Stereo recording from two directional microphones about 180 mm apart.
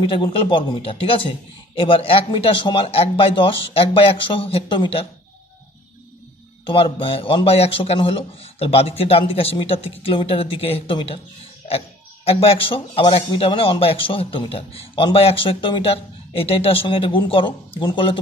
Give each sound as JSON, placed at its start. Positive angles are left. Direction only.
{"t": 0.0, "sound": "a man's voice", "side_deg": 30}
{"t": 6.6, "sound": "a man's voice", "side_deg": 30}
{"t": 12.3, "sound": "speech", "side_deg": 30}